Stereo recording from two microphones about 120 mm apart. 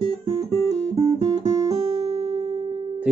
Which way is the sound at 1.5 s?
60° right (ahead or behind).